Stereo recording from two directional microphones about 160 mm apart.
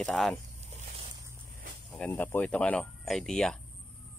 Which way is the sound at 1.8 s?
5° left (ahead or behind).